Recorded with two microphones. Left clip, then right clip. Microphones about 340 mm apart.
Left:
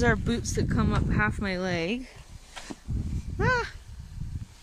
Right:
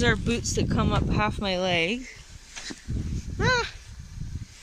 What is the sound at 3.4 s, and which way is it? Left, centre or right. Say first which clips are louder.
Speech: right 2 dB; centre.